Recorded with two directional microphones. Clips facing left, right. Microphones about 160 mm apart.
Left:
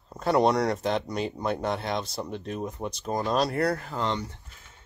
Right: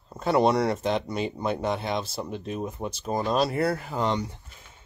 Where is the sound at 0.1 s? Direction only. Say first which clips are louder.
Right 1 dB; centre (ahead or behind).